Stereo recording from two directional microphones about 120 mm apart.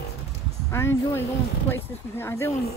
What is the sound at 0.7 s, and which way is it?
Speech, 20° left (ahead or behind).